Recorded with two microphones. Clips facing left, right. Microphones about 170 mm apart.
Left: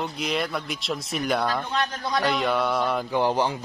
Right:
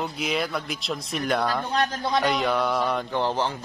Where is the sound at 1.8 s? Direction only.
25° right (ahead or behind).